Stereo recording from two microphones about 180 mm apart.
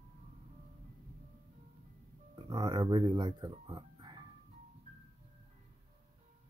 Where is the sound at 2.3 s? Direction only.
20° right (ahead or behind).